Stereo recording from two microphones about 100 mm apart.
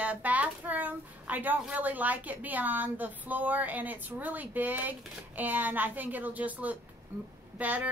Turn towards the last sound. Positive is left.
turn(degrees=-15)  # may be behind; listen again after turning